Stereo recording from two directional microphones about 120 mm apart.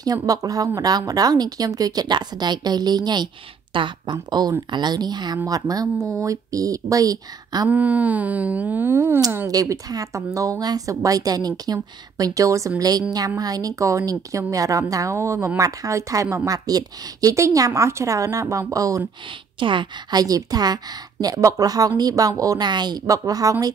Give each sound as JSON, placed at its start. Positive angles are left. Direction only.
{"t": 0.0, "sound": "a woman's voice", "side_deg": -30}
{"t": 7.7, "sound": "a sound", "side_deg": -15}
{"t": 9.5, "sound": "a woman's voice", "side_deg": -30}
{"t": 19.6, "sound": "a woman's voice", "side_deg": -40}